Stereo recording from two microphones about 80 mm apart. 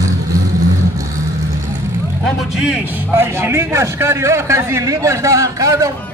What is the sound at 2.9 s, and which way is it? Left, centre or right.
A man's voice, right.